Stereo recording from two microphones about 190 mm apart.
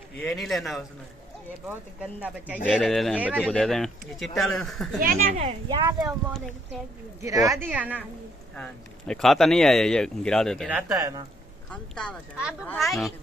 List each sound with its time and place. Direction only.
0.2 s speech: centre (ahead or behind)
3.4 s speech: 5° left (ahead or behind)
5.0 s speech: 45° right (ahead or behind)
5.7 s speech: 20° right (ahead or behind)
7.2 s speech: 15° right (ahead or behind)
8.5 s speech: 5° left (ahead or behind)
10.7 s speech: 10° right (ahead or behind)
11.0 s speech: 20° right (ahead or behind)
11.7 s speech: 5° left (ahead or behind)